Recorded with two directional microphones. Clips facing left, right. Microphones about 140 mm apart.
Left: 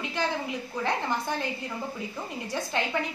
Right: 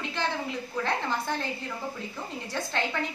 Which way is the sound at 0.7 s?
15° left (ahead or behind).